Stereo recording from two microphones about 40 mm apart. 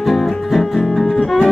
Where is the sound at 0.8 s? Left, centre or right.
Centre.